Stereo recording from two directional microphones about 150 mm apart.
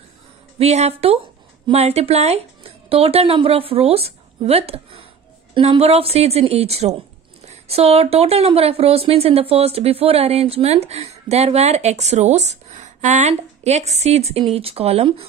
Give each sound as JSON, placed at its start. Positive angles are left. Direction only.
{"t": 0.6, "sound": "speech", "side_deg": -45}